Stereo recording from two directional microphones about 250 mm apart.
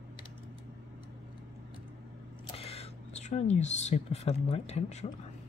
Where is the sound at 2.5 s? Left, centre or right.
Left.